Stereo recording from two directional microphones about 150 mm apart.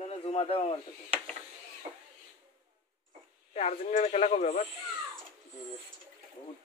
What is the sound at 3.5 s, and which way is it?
Speech, 50° left (ahead or behind).